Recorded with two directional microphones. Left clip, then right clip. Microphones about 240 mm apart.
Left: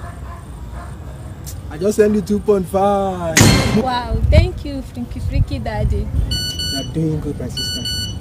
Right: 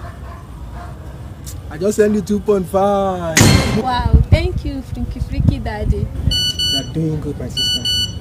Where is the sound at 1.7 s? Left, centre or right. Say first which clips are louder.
Even; centre.